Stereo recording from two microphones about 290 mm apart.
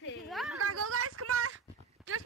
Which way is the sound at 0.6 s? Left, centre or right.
Right.